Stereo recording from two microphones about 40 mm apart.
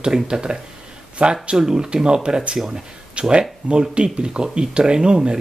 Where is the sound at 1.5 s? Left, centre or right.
Centre.